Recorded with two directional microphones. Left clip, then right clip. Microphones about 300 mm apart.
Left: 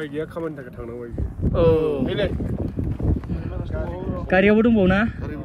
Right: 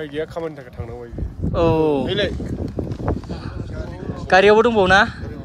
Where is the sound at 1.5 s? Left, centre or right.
Centre.